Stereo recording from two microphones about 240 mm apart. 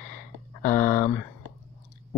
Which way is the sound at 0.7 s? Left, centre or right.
Centre.